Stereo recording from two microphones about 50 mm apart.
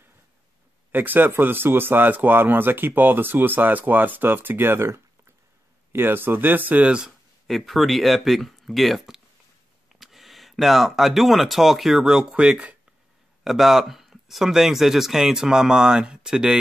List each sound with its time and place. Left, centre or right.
0.9 s speech: right
5.9 s speech: right
7.4 s speech: centre; by 12.7 s right
13.4 s speech: centre